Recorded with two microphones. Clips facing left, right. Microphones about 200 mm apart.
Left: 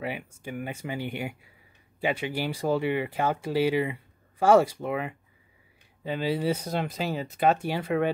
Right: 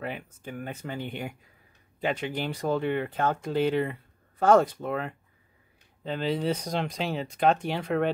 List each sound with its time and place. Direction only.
0.0 s speech: 10° left (ahead or behind)